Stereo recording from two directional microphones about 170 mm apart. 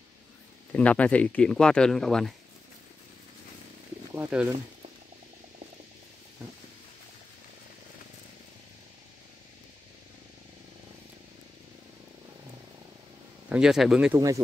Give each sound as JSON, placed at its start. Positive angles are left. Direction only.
{"t": 0.7, "sound": "speech", "side_deg": 10}
{"t": 4.1, "sound": "speech", "side_deg": -10}
{"t": 13.5, "sound": "speech", "side_deg": -5}
{"t": 14.1, "sound": "speech", "side_deg": -20}